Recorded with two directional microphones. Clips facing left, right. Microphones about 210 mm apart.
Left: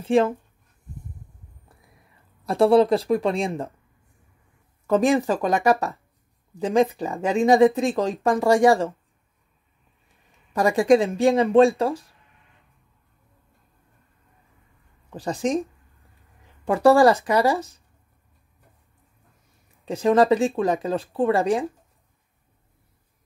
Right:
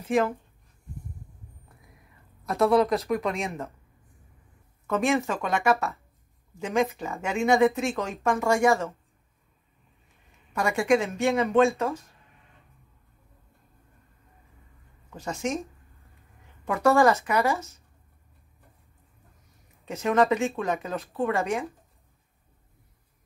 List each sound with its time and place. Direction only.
0.0 s speech: 30° left (ahead or behind)
2.4 s speech: 30° left (ahead or behind)
4.8 s speech: 35° left (ahead or behind)
10.5 s speech: 35° left (ahead or behind)
15.1 s speech: 35° left (ahead or behind)
16.6 s speech: 30° left (ahead or behind)
19.8 s speech: 30° left (ahead or behind)